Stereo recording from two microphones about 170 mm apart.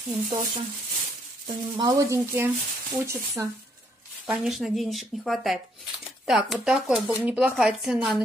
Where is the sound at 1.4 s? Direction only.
25° right (ahead or behind).